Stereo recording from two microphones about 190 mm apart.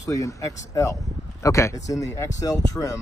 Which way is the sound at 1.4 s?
15° left (ahead or behind).